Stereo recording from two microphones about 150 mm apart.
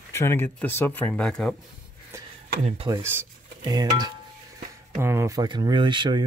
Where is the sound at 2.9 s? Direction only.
25° right (ahead or behind).